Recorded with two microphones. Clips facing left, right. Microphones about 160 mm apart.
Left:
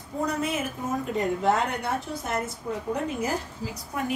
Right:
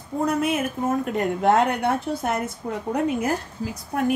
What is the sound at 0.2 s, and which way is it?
A woman's voice, 55° right (ahead or behind).